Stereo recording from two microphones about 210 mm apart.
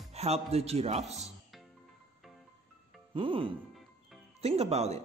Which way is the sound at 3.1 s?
25° right (ahead or behind).